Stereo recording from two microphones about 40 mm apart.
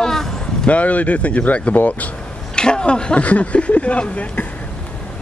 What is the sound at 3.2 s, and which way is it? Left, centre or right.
Speech, left.